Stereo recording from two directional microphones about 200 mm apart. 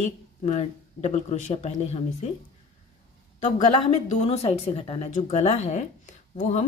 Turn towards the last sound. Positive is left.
turn(degrees=35)  # may be behind; listen again after turning